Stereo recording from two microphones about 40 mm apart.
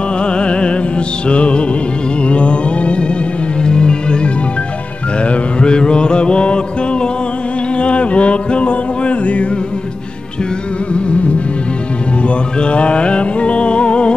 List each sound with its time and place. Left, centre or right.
0.2 s music: left
10.9 s music: left
12.5 s music: left